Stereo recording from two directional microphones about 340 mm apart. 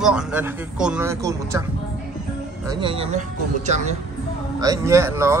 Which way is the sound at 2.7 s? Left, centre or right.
Centre.